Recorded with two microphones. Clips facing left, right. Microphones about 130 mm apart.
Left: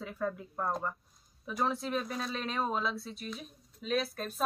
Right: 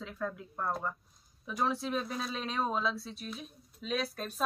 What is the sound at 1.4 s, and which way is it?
Speech, centre (ahead or behind).